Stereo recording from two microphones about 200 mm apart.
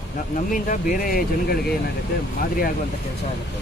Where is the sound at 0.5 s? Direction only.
40° left (ahead or behind).